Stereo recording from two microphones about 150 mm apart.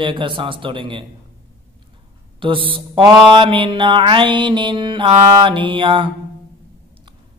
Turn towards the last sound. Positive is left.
turn(degrees=-35)  # may be behind; listen again after turning